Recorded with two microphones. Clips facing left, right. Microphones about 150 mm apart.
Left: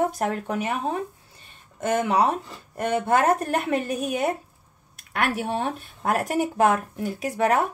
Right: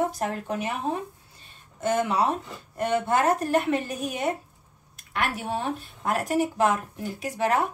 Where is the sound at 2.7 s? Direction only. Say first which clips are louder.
Left 2 dB; 55° left (ahead or behind).